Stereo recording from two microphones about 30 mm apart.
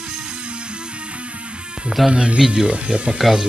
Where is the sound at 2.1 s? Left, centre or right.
Right.